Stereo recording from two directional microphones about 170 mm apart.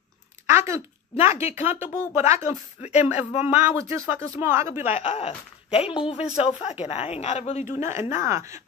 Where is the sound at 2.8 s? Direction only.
40° left (ahead or behind).